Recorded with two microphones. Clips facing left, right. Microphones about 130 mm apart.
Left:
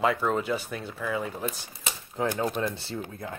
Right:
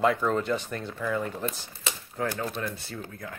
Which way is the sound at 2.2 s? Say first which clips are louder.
Left 3 dB; 20° left (ahead or behind).